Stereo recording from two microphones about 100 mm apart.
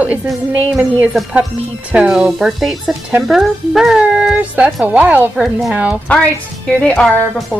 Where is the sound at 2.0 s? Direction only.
5° right (ahead or behind).